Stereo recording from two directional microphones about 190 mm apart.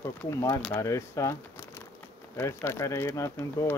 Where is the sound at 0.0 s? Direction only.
15° left (ahead or behind).